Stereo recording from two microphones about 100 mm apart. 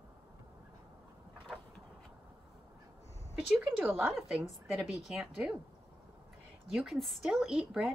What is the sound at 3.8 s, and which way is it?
Speech, 20° right (ahead or behind).